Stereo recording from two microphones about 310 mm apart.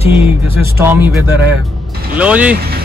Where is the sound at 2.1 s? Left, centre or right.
Centre.